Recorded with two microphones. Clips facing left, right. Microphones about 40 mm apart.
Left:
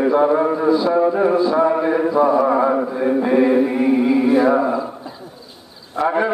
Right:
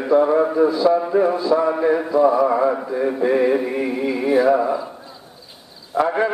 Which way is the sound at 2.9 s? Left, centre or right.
Centre.